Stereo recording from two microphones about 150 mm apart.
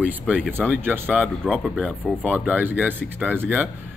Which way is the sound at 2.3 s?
10° right (ahead or behind).